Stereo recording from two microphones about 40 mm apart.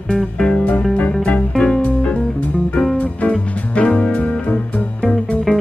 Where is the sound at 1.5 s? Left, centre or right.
Centre.